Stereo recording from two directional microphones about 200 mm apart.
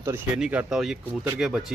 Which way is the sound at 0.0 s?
10° right (ahead or behind).